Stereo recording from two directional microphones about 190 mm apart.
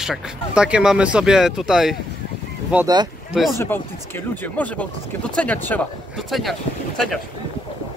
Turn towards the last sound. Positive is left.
turn(degrees=0)  # may be behind; listen again after turning